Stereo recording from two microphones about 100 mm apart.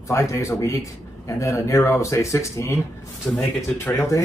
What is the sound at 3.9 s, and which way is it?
Speech, 30° left (ahead or behind).